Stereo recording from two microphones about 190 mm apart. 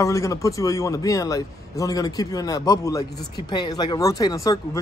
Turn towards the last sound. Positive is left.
turn(degrees=20)  # may be behind; listen again after turning